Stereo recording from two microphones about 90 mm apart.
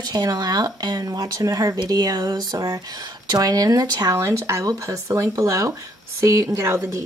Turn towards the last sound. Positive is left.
turn(degrees=-30)  # may be behind; listen again after turning